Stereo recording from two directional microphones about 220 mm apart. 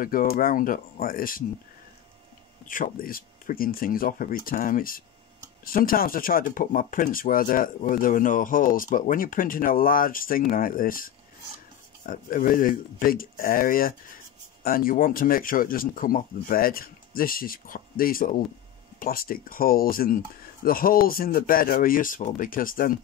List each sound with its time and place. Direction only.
0.0 s speech: 40° left (ahead or behind)
2.6 s speech: 35° left (ahead or behind)
12.1 s speech: 40° left (ahead or behind)